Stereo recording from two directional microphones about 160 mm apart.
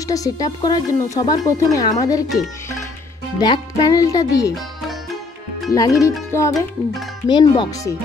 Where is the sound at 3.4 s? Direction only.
25° left (ahead or behind).